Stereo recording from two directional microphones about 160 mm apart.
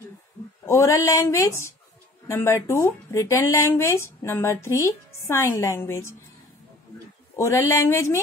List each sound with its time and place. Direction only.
0.7 s speech: 20° left (ahead or behind)
7.3 s speech: 15° left (ahead or behind)